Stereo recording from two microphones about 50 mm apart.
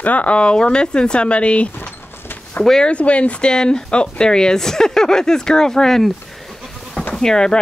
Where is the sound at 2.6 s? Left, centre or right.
Centre.